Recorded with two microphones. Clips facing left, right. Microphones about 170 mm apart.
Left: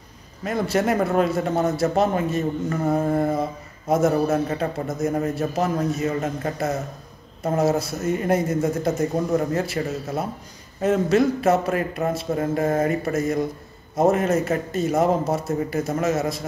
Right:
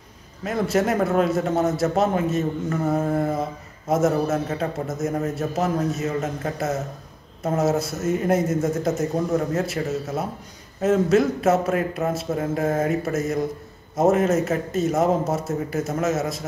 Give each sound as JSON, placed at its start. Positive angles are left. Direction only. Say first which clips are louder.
{"t": 0.4, "sound": "a man's voice", "louder": "right 1 dB", "side_deg": 0}